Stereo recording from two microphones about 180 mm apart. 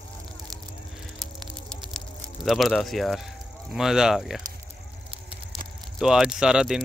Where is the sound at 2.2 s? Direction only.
Centre (ahead or behind).